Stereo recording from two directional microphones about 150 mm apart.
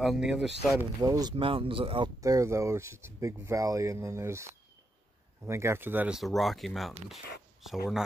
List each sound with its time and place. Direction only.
0.0 s speech: centre (ahead or behind)
1.0 s speech: 25° right (ahead or behind)
1.3 s speech: 35° right (ahead or behind)
2.1 s speech: 25° right (ahead or behind)
6.1 s speech: centre (ahead or behind)